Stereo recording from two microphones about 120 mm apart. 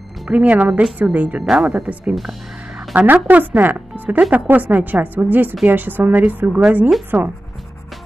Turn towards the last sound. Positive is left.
turn(degrees=-15)  # may be behind; listen again after turning